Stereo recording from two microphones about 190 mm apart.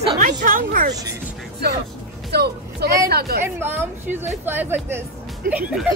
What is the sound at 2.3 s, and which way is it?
Speech, 60° right (ahead or behind).